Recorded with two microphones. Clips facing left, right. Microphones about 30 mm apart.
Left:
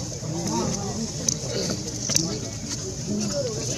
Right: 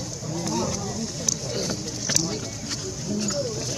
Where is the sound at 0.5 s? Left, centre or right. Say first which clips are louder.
Left 1 dB; centre.